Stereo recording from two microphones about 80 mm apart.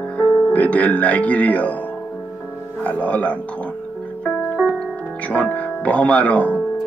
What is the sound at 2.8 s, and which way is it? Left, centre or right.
Speech, centre.